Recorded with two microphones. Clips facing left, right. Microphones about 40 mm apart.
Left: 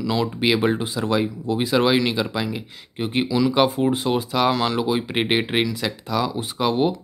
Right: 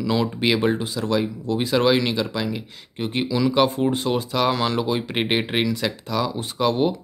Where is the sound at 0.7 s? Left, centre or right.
Centre.